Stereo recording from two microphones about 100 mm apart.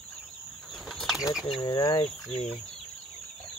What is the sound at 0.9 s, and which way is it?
Bird flight, centre (ahead or behind).